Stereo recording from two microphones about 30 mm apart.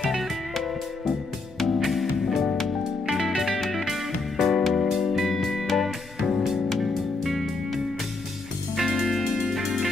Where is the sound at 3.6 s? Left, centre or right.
Centre.